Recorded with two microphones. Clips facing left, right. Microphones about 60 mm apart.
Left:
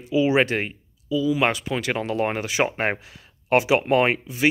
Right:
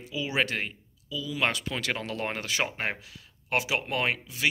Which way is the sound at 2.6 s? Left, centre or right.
Left.